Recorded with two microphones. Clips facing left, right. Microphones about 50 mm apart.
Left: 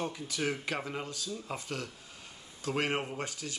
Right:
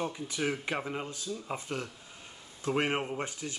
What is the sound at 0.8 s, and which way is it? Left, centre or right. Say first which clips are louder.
Speech: right 2 dB; centre.